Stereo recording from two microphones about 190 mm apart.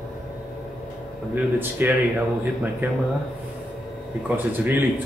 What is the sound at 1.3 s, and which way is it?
A man's voice, 10° right (ahead or behind).